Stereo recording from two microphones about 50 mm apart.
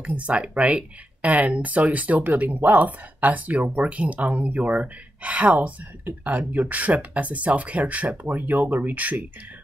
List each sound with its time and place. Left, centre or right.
0.0 s speech: right